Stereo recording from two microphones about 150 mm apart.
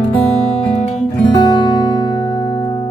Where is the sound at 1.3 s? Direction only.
30° left (ahead or behind).